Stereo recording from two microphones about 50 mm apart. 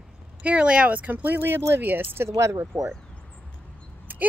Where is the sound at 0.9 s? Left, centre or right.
Right.